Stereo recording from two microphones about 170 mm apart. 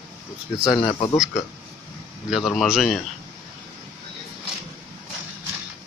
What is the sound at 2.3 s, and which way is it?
Speech, centre (ahead or behind).